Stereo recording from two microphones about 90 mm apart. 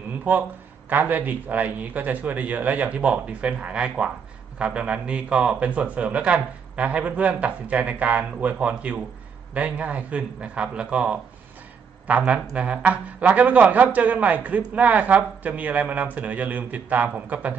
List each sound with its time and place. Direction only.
0.2 s a man's voice: 20° right (ahead or behind)